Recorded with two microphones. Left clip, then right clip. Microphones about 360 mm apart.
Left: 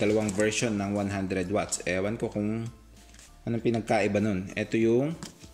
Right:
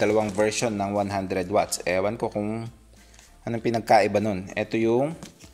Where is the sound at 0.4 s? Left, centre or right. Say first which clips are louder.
Right 4 dB; centre.